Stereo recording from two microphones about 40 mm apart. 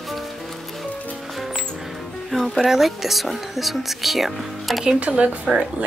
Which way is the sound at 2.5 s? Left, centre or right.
Centre.